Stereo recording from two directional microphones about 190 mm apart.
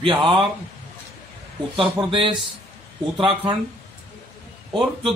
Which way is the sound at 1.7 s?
25° right (ahead or behind).